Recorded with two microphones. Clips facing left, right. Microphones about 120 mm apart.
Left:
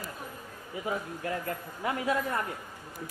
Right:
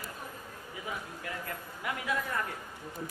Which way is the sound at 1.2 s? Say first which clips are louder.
Left 7 dB; 30° left (ahead or behind).